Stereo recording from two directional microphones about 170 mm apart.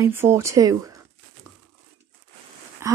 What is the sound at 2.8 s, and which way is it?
Speech, 15° right (ahead or behind).